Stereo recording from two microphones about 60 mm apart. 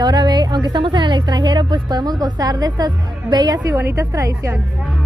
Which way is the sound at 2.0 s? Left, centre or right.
Right.